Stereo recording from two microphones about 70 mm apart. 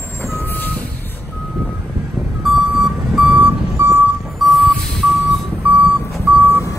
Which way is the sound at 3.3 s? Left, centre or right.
Right.